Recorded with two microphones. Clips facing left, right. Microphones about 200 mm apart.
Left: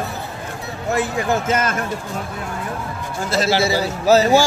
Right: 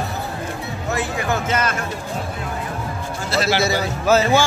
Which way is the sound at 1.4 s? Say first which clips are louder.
Left 2 dB; 45° left (ahead or behind).